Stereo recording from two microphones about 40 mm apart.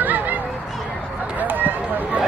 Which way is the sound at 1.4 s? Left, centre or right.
Right.